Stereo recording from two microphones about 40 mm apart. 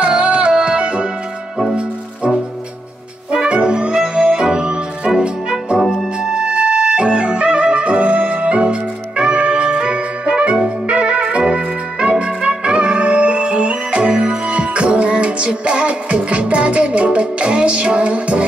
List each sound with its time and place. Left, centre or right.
0.0 s music: right
3.4 s music: right
5.8 s music: centre
6.1 s music: right